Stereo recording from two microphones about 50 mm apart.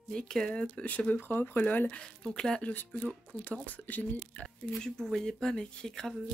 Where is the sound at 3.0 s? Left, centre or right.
Left.